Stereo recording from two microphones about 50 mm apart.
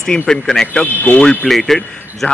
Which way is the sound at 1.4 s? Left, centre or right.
Centre.